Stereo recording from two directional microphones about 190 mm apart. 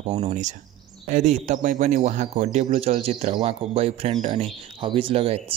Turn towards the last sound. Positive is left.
turn(degrees=-30)  # may be behind; listen again after turning